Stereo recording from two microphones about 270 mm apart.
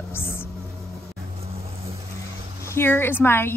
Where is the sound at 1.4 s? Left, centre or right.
Right.